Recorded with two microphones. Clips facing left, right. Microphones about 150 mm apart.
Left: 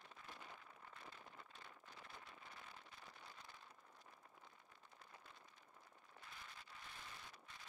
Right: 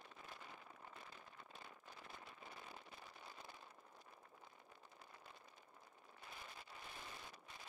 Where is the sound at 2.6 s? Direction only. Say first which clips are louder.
Right 3 dB; 10° right (ahead or behind).